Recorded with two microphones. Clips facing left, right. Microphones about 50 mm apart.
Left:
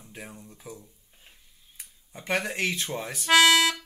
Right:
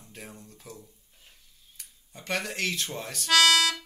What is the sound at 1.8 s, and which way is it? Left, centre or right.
Speech, centre.